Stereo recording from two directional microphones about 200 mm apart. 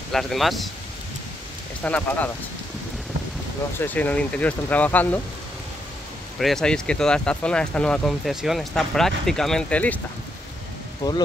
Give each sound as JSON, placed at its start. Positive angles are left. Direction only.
{"t": 0.1, "sound": "speech", "side_deg": 0}
{"t": 1.8, "sound": "speech", "side_deg": 10}
{"t": 3.8, "sound": "speech", "side_deg": 10}
{"t": 6.3, "sound": "speech", "side_deg": 0}
{"t": 11.0, "sound": "speech", "side_deg": 20}